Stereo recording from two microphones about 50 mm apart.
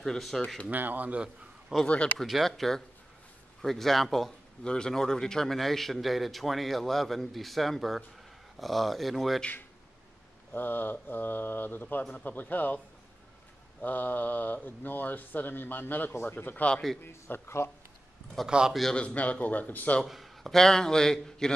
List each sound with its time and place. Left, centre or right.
0.0 s a man's voice: centre
0.7 s speech: right
1.9 s speech: left
2.2 s a man's voice: centre
4.6 s a man's voice: centre
10.5 s speech: left
13.8 s speech: left
17.0 s a man's voice: left
18.4 s a man's voice: centre
18.9 s speech: left
20.1 s a sound: centre
20.5 s a man's voice: centre